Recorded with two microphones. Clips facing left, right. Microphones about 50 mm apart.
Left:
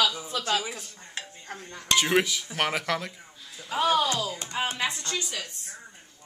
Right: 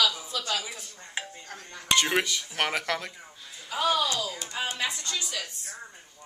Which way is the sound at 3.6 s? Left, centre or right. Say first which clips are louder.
Left 2 dB; left.